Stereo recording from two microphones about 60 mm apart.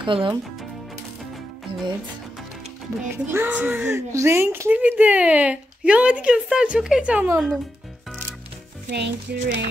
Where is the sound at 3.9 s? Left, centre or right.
Right.